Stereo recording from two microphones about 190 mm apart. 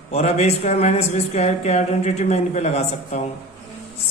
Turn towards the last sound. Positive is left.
turn(degrees=35)  # may be behind; listen again after turning